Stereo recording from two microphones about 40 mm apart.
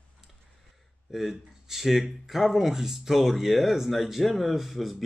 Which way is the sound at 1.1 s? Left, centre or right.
Centre.